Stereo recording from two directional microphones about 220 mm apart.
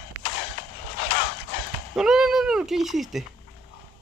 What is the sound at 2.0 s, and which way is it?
Cat, centre (ahead or behind).